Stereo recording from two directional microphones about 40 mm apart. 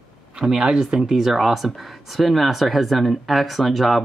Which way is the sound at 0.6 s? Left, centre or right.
Centre.